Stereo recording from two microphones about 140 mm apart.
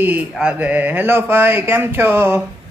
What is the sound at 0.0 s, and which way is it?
Speech, 10° right (ahead or behind).